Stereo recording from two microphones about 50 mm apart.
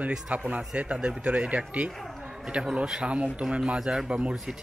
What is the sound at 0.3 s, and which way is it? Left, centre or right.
Speech, right.